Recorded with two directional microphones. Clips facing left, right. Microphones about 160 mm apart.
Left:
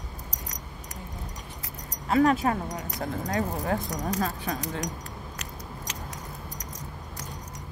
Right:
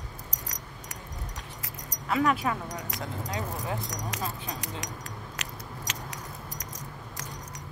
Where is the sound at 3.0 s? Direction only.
50° left (ahead or behind).